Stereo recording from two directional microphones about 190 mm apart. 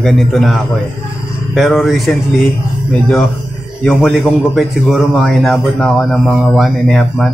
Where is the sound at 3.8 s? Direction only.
Centre (ahead or behind).